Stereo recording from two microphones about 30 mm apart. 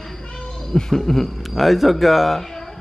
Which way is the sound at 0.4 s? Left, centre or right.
Centre.